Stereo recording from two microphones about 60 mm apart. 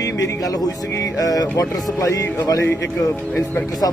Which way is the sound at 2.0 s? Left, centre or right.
Left.